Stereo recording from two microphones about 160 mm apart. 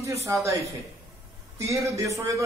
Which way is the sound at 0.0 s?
20° right (ahead or behind).